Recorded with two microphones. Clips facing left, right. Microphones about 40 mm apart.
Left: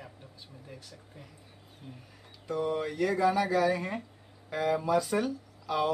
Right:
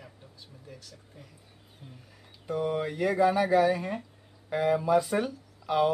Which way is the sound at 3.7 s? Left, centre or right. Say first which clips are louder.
Right 1 dB; centre.